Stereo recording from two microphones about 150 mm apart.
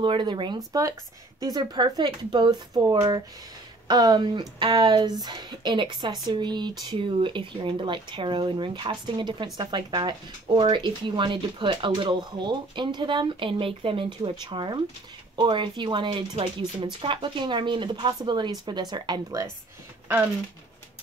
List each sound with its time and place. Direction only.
0.0 s speech: 30° right (ahead or behind)